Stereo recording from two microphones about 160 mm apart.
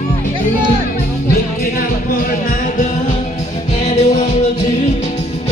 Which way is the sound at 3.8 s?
45° left (ahead or behind).